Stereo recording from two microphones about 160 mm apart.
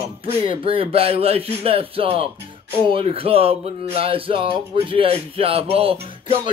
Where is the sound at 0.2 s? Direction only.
35° right (ahead or behind).